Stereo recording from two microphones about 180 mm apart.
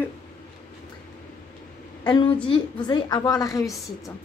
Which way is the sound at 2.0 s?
25° left (ahead or behind).